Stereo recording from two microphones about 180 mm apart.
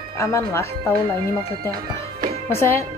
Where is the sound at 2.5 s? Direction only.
15° left (ahead or behind).